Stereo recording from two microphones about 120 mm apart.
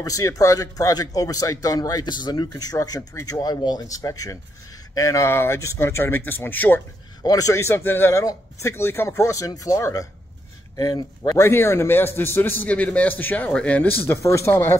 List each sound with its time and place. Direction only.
0.0 s a man's voice: 30° left (ahead or behind)
7.2 s a man's voice: 30° left (ahead or behind)